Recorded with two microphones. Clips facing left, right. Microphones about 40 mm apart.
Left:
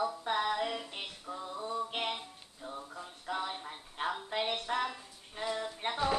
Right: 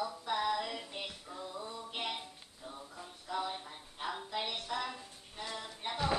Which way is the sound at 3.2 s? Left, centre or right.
Left.